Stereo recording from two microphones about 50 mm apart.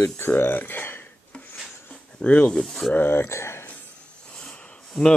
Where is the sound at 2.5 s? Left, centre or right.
Centre.